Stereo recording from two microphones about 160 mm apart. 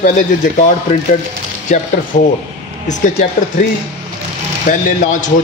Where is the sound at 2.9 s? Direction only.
55° left (ahead or behind).